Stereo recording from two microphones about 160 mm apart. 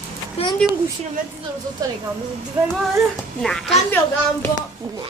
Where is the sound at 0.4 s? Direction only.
40° left (ahead or behind).